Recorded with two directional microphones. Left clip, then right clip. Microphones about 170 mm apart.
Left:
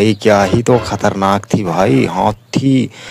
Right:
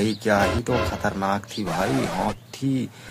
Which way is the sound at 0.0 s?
50° left (ahead or behind).